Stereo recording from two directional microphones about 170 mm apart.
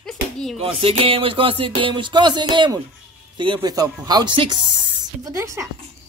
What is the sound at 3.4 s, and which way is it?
Speech, 25° right (ahead or behind).